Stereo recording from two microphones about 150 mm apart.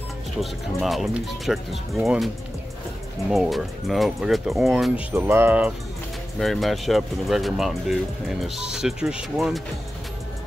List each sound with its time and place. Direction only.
0.4 s speech: centre (ahead or behind)
5.1 s speech: 15° right (ahead or behind)
6.3 s speech: centre (ahead or behind)